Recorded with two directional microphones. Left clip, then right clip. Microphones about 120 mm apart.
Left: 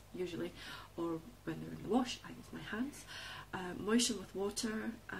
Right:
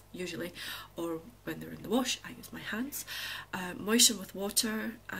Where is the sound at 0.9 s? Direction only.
20° right (ahead or behind).